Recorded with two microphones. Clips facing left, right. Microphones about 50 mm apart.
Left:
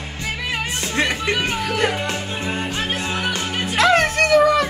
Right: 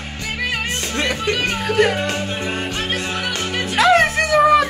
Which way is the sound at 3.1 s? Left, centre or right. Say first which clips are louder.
Left 1 dB; left.